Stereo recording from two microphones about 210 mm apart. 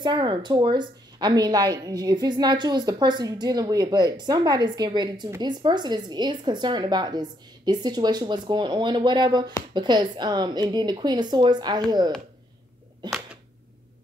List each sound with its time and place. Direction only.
0.0 s a woman's voice: 20° right (ahead or behind)